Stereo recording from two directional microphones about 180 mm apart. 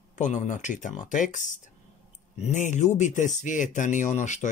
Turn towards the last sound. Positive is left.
turn(degrees=40)  # may be behind; listen again after turning